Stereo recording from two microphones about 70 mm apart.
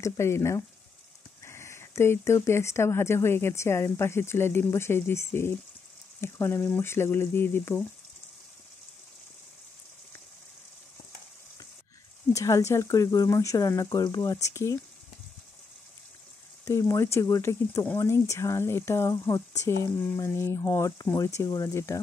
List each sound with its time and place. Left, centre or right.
0.0 s speech: left
12.3 s speech: left
13.9 s speech: left
16.6 s speech: left
21.0 s speech: left